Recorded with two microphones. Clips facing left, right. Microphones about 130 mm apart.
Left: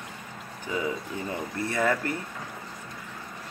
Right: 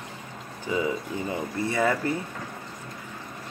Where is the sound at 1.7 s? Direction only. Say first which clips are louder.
Right 1 dB; 15° right (ahead or behind).